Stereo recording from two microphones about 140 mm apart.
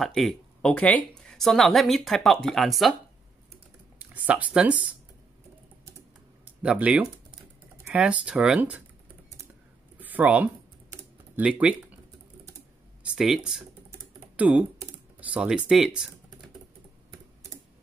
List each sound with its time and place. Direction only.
0.0 s speech: centre (ahead or behind)
4.1 s speech: 10° right (ahead or behind)
6.4 s typing: 10° right (ahead or behind)
7.8 s speech: 10° right (ahead or behind)
9.9 s a sound: 10° right (ahead or behind)
11.3 s speech: 10° right (ahead or behind)
13.0 s speech: 5° right (ahead or behind)
13.8 s typing: 10° right (ahead or behind)
15.1 s speech: 10° right (ahead or behind)